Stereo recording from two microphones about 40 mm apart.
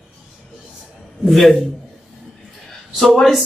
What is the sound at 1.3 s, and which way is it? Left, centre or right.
Speech, centre.